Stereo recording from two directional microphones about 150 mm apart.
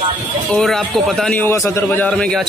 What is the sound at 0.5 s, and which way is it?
Speech, centre (ahead or behind).